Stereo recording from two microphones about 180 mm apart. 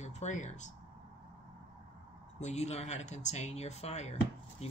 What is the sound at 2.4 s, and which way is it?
Speech, 40° left (ahead or behind).